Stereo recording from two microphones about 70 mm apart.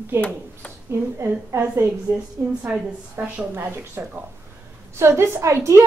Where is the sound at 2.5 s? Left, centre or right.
Centre.